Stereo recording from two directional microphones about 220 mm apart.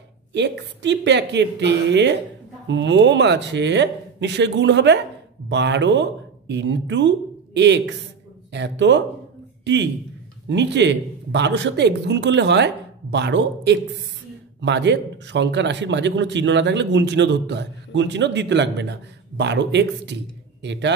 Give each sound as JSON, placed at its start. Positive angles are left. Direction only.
{"t": 0.3, "sound": "a man's voice", "side_deg": -55}
{"t": 10.5, "sound": "a man's voice", "side_deg": -50}